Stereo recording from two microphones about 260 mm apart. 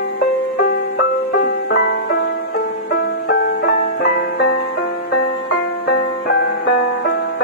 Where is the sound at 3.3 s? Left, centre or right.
Left.